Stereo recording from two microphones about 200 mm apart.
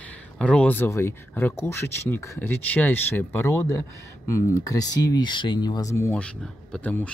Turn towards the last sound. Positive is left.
turn(degrees=5)  # may be behind; listen again after turning